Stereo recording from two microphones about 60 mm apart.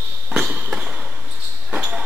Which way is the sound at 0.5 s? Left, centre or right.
Centre.